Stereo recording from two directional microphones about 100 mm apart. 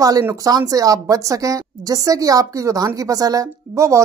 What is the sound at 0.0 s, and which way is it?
A woman's voice, 35° right (ahead or behind).